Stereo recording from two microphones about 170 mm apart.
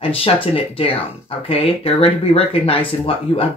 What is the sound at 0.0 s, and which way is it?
Speech, 35° left (ahead or behind).